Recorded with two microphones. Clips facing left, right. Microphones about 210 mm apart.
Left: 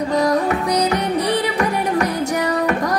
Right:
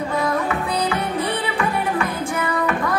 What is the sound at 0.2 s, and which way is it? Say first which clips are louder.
Music: left 5 dB; 40° left (ahead or behind).